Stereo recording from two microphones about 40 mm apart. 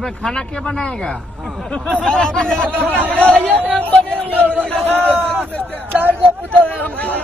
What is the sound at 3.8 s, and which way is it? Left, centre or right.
Speech, left.